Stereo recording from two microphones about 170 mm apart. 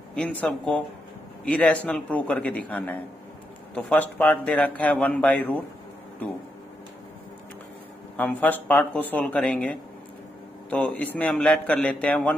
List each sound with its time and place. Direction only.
0.1 s a man's voice: 5° left (ahead or behind)
8.2 s a man's voice: 10° left (ahead or behind)